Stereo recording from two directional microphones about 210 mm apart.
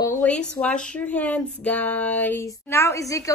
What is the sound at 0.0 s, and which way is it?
A woman's voice, 5° left (ahead or behind).